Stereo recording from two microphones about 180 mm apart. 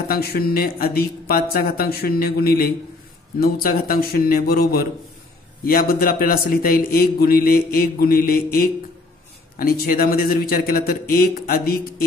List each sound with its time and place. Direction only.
0.1 s a man's voice: 60° left (ahead or behind)